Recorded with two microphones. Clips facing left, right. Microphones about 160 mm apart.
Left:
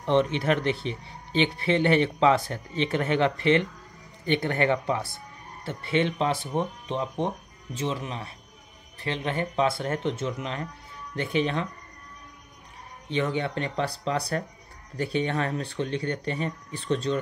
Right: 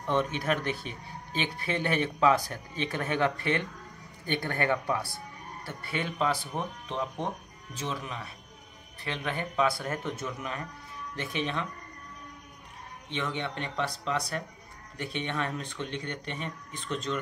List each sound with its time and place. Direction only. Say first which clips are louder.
0.0 s speech: left 6 dB; 25° left (ahead or behind)
13.1 s speech: left 7 dB; 35° left (ahead or behind)